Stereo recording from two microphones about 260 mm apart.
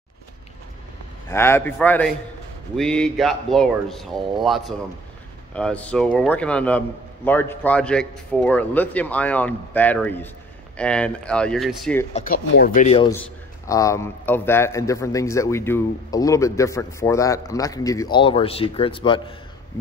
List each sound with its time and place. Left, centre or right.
1.3 s a man's voice: centre
12.1 s speech: left
13.7 s a man's voice: centre